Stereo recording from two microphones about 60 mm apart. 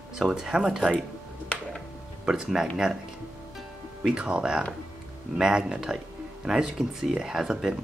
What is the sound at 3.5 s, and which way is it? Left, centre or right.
Music, centre.